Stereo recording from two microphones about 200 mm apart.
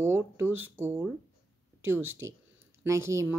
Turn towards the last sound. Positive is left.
turn(degrees=-15)  # may be behind; listen again after turning